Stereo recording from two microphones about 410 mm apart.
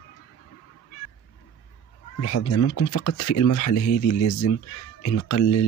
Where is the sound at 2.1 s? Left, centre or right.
Left.